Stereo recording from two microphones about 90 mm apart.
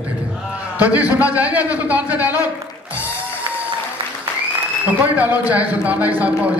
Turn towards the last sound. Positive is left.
turn(degrees=-15)  # may be behind; listen again after turning